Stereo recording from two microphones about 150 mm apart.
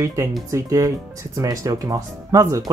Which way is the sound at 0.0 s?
20° right (ahead or behind).